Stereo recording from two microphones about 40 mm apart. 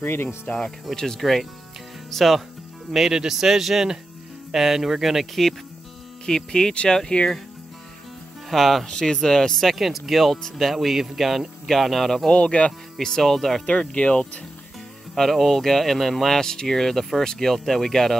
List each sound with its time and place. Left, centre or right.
0.0 s speech: left
0.9 s speech: centre
2.9 s speech: centre
6.2 s speech: centre
6.7 s speech: left
8.5 s speech: centre
8.8 s speech: centre
12.3 s speech: left
12.9 s speech: centre
13.7 s speech: left
15.1 s speech: centre